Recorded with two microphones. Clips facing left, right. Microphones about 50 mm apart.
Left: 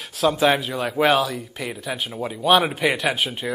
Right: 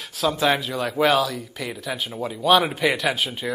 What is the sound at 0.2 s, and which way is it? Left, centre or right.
Speech, centre.